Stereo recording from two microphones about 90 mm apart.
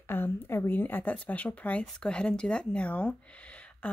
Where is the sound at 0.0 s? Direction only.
25° left (ahead or behind).